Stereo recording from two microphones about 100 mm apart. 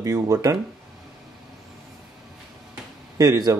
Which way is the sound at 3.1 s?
40° right (ahead or behind).